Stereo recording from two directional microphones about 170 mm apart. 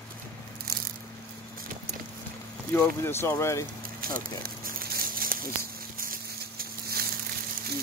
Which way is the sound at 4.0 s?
60° right (ahead or behind).